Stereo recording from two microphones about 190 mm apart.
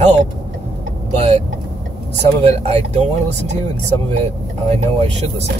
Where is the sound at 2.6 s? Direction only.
35° right (ahead or behind).